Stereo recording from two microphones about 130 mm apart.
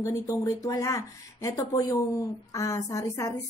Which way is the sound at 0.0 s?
25° left (ahead or behind).